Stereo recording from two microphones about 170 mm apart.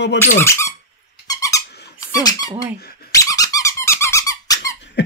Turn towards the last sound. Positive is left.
turn(degrees=20)  # may be behind; listen again after turning